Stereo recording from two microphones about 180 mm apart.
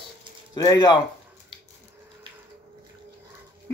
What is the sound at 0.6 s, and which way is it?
Speech, 20° left (ahead or behind).